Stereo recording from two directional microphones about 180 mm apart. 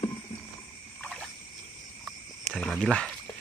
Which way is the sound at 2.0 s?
5° left (ahead or behind).